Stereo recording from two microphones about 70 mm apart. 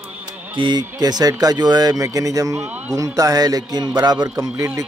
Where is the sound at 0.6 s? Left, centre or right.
Right.